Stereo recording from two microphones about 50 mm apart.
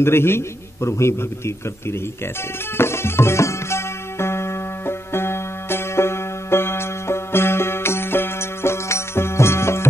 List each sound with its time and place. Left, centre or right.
0.0 s a man's voice: left
2.8 s music: left